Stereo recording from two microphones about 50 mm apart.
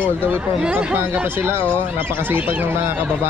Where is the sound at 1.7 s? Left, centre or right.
Right.